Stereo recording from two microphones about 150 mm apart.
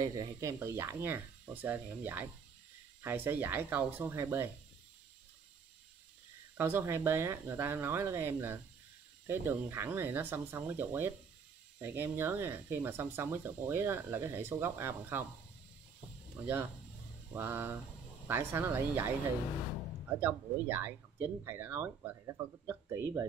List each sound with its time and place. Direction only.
0.0 s speech: 25° right (ahead or behind)
6.5 s speech: 15° right (ahead or behind)
17.3 s speech: 15° right (ahead or behind)
20.2 s speech: 15° right (ahead or behind)